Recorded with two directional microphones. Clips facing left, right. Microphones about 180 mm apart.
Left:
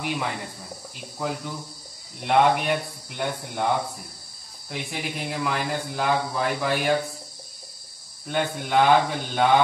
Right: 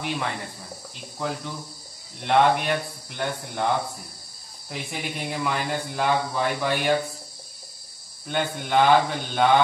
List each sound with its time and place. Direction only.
0.0 s speech: 5° left (ahead or behind)
8.3 s speech: centre (ahead or behind)